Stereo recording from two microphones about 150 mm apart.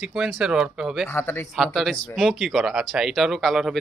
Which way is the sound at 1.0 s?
15° left (ahead or behind).